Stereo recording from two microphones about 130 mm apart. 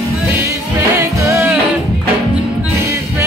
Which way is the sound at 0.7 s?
20° right (ahead or behind).